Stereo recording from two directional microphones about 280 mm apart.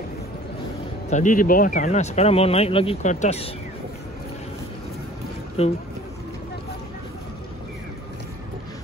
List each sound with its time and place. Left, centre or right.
1.1 s speech: left
5.6 s speech: left